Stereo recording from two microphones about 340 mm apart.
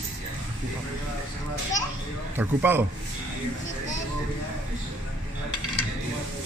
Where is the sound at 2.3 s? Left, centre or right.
Centre.